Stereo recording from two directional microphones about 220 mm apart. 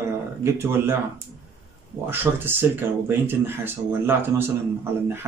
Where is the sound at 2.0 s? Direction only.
10° right (ahead or behind).